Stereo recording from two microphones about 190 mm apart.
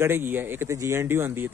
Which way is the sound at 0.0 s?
10° right (ahead or behind).